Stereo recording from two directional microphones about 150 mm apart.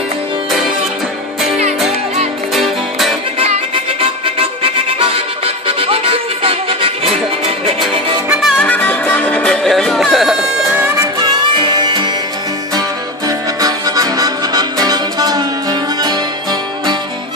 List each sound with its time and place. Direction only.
2.5 s music: centre (ahead or behind)
3.3 s music: 45° right (ahead or behind)
8.3 s music: centre (ahead or behind)
8.6 s music: 10° left (ahead or behind); by 10.9 s 5° right (ahead or behind)
11.0 s music: 30° right (ahead or behind)
13.6 s music: 25° right (ahead or behind)